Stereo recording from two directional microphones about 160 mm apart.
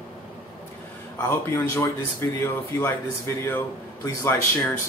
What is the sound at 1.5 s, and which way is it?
A man's voice, 15° left (ahead or behind).